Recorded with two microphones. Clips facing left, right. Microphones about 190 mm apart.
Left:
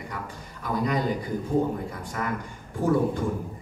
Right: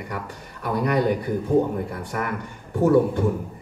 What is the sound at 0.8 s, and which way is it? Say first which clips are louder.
A man's voice: right 7 dB; 65° right (ahead or behind).